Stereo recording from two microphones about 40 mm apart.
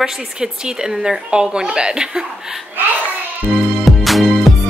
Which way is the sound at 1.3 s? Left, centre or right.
Right.